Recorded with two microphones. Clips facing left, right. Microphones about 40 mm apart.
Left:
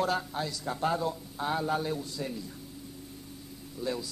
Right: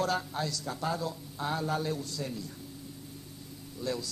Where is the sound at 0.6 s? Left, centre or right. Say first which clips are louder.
Left 4 dB; left.